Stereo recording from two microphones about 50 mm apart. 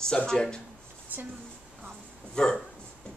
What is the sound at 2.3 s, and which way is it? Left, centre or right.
Speech, centre.